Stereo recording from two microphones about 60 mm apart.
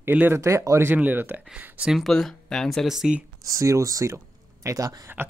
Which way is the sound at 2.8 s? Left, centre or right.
Centre.